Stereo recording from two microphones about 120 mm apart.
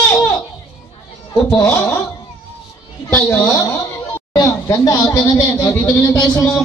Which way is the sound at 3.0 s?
15° left (ahead or behind).